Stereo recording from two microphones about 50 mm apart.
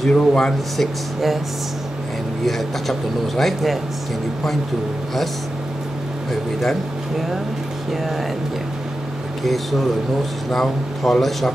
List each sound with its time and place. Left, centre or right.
0.1 s speech: centre
0.7 s speech: centre
2.4 s speech: centre
6.6 s speech: centre
9.4 s speech: centre